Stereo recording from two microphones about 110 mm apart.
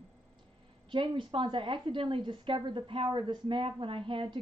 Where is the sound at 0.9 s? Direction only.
45° right (ahead or behind).